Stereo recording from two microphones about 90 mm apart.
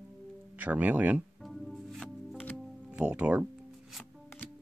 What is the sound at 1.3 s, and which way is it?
Music, centre (ahead or behind).